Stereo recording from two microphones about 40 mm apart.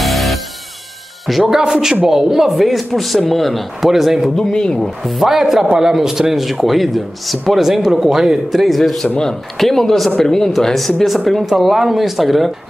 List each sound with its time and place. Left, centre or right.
0.0 s music: centre
1.3 s speech: centre
1.6 s speech: centre
4.4 s speech: centre
5.0 s speech: centre
11.6 s speech: centre